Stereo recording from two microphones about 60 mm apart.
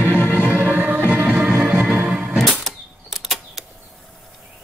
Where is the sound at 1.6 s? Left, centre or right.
Centre.